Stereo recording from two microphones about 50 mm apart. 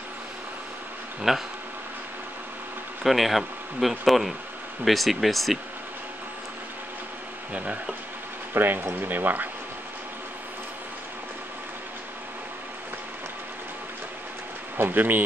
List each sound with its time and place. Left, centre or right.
1.3 s speech: centre
3.0 s speech: centre
7.5 s speech: right
8.5 s speech: right
14.8 s speech: right